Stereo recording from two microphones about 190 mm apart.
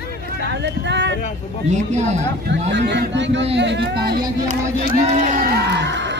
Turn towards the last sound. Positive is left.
turn(degrees=-65)  # may be behind; listen again after turning